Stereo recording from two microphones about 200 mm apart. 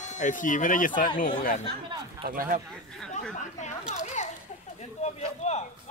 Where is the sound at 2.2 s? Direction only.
45° right (ahead or behind).